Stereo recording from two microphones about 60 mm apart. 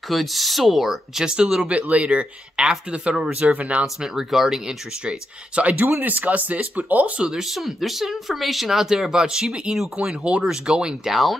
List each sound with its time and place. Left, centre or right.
0.1 s speech: centre
1.7 s speech: right
3.8 s speech: centre
5.6 s speech: right
7.2 s speech: centre